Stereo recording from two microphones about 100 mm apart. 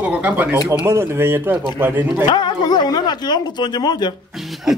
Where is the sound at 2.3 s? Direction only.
45° left (ahead or behind).